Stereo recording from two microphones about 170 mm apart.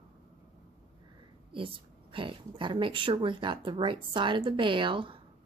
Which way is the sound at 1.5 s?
30° right (ahead or behind).